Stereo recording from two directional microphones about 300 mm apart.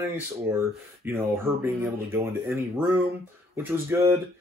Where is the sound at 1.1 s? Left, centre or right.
Centre.